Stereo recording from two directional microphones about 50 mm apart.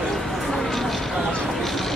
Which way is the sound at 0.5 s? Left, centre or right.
Centre.